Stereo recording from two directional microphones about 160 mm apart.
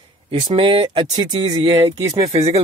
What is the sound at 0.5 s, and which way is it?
Speech, 35° right (ahead or behind).